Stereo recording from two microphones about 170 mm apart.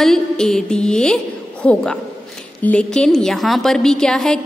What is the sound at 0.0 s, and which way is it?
A woman's voice, centre (ahead or behind).